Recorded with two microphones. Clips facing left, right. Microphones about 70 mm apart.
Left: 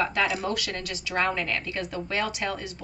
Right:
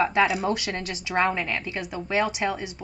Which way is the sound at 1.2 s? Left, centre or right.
Centre.